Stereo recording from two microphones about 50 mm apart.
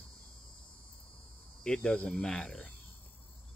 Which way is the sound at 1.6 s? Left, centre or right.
Centre.